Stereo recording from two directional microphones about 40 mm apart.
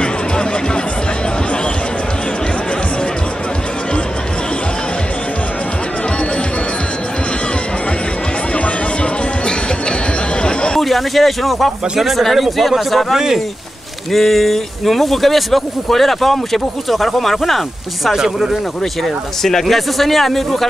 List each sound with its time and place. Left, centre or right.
8.5 s music: left
10.4 s a sound: left
10.8 s speech: centre
13.1 s speech: centre
14.1 s speech: centre
18.1 s speech: centre
19.4 s speech: centre